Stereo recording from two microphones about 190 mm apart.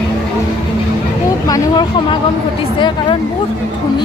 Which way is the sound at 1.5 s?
20° left (ahead or behind).